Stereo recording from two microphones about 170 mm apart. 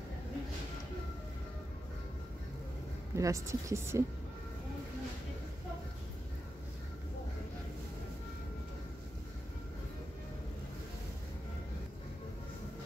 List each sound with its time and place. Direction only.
3.2 s speech: 20° right (ahead or behind)